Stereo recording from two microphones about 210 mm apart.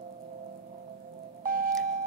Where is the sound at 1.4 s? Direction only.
40° right (ahead or behind).